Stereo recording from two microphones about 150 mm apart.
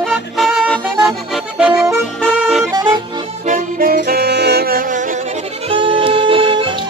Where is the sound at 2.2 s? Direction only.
Centre (ahead or behind).